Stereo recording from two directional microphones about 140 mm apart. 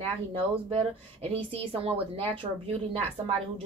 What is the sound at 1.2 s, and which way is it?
Speech, 45° right (ahead or behind).